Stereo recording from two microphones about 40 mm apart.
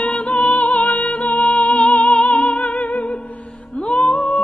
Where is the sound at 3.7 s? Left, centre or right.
Left.